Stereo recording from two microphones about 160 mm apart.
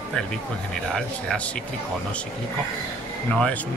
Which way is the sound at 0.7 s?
5° left (ahead or behind).